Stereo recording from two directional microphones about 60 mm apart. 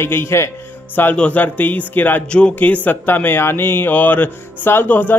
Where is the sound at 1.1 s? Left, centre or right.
Left.